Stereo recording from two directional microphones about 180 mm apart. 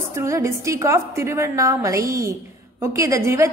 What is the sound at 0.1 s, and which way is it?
A woman's voice, 15° right (ahead or behind).